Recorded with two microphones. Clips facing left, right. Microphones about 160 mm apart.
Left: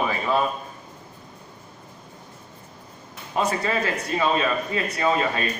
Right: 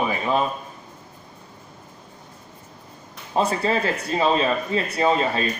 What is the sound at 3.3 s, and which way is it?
A man's voice, 30° right (ahead or behind).